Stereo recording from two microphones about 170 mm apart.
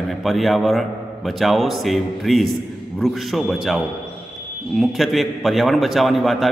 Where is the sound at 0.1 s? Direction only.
Centre (ahead or behind).